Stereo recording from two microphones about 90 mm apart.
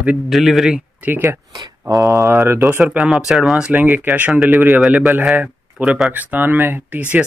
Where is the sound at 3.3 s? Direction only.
5° right (ahead or behind).